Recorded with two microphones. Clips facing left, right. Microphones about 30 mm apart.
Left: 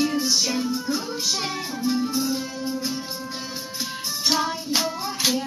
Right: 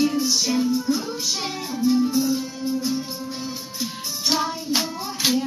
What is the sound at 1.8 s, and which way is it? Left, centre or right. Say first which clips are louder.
Music: right 5 dB; centre.